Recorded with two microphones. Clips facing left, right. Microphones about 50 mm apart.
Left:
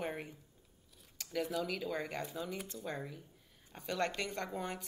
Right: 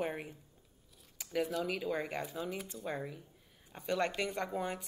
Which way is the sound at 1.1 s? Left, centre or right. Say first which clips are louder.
Right 3 dB; centre.